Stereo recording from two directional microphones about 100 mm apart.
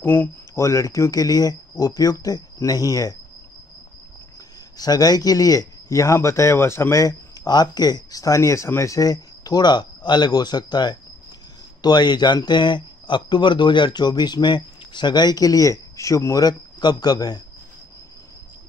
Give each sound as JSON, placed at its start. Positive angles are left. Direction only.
{"t": 0.0, "sound": "speech", "side_deg": 20}
{"t": 0.7, "sound": "speech", "side_deg": 35}
{"t": 4.7, "sound": "speech", "side_deg": 40}